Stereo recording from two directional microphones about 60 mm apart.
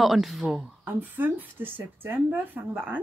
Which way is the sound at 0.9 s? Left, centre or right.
Right.